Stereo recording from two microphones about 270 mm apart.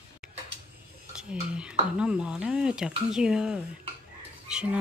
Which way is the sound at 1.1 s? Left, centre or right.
Centre.